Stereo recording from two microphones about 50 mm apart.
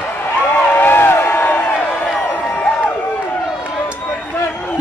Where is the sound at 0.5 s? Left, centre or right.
Left.